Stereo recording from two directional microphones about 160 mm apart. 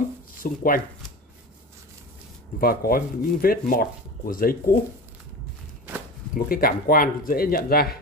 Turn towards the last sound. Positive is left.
turn(degrees=70)  # may be behind; listen again after turning